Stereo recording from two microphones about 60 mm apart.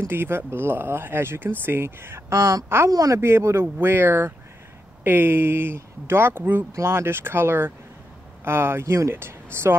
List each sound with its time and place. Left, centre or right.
0.0 s speech: right
2.9 s speech: right
3.2 s speech: right